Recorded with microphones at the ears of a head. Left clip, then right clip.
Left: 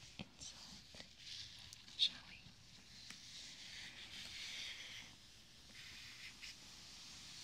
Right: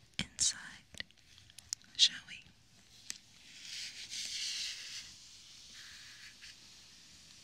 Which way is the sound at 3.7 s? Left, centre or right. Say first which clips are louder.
Right 13 dB; right.